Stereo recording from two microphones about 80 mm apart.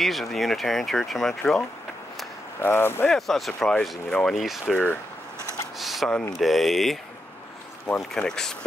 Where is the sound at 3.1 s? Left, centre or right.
Centre.